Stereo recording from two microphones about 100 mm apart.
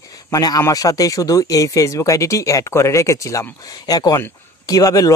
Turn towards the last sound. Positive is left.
turn(degrees=35)  # may be behind; listen again after turning